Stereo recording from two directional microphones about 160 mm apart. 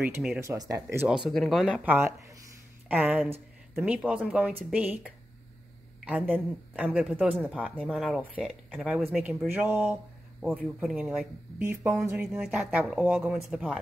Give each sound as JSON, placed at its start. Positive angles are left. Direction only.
{"t": 0.0, "sound": "speech", "side_deg": -10}
{"t": 1.0, "sound": "speech", "side_deg": -5}
{"t": 6.0, "sound": "speech", "side_deg": -10}
{"t": 12.3, "sound": "speech", "side_deg": -5}